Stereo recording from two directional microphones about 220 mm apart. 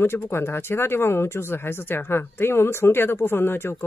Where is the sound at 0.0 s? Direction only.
10° left (ahead or behind).